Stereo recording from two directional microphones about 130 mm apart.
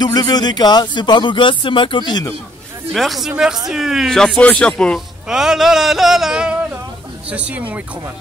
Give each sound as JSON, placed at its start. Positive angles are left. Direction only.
{"t": 0.0, "sound": "speech", "side_deg": 30}
{"t": 2.9, "sound": "speech", "side_deg": 0}